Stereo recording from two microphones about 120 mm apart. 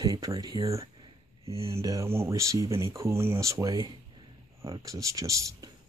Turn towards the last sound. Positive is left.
turn(degrees=-30)  # may be behind; listen again after turning